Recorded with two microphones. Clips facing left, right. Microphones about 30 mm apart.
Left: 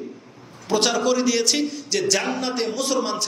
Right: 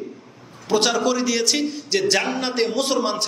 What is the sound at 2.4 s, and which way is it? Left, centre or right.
Speech, right.